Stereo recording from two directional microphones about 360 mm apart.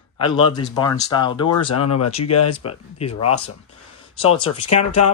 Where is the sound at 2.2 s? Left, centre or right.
Left.